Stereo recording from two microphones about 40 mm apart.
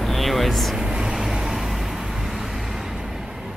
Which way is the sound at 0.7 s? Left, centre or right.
Centre.